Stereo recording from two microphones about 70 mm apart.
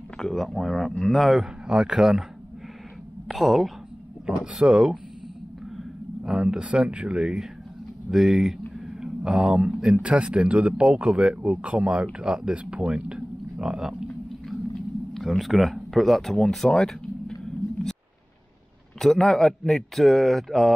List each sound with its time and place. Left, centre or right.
0.2 s speech: centre
3.3 s speech: centre
4.6 s speech: centre
8.7 s a sound: centre
9.9 s speech: centre
15.1 s speech: centre
18.9 s speech: centre